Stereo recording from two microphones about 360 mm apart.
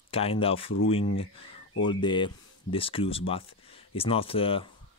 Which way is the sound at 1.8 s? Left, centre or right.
Centre.